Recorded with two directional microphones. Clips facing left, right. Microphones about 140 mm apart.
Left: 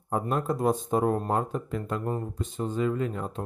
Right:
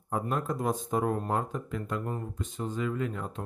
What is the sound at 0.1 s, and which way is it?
Speech, 30° left (ahead or behind).